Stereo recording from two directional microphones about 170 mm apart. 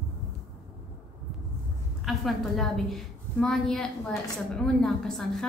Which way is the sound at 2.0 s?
Centre (ahead or behind).